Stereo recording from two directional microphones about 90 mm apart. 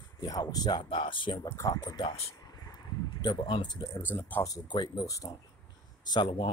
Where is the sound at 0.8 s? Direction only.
70° left (ahead or behind).